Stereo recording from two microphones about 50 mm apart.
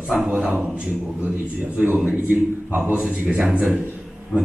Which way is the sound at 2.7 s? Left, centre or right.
Right.